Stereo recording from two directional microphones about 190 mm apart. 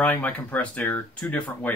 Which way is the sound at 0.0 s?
10° left (ahead or behind).